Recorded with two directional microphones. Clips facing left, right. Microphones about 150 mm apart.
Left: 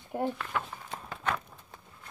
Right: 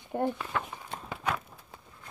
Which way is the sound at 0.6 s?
15° right (ahead or behind).